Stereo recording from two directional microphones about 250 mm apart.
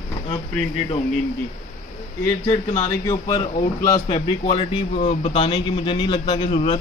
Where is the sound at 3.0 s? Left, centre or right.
Centre.